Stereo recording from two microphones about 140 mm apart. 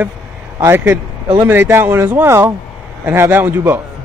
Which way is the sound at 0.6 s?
15° right (ahead or behind).